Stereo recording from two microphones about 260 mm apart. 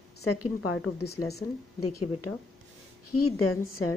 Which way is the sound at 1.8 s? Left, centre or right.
Left.